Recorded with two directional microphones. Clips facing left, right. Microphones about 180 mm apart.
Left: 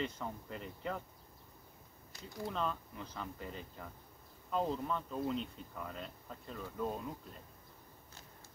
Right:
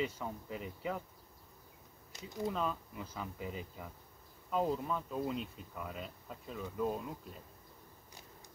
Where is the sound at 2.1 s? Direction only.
20° right (ahead or behind).